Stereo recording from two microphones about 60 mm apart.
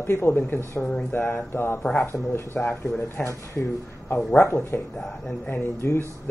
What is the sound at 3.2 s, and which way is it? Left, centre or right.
Speech, centre.